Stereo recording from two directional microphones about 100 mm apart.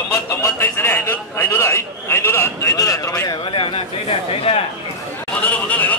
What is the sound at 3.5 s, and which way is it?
Speech, 65° left (ahead or behind).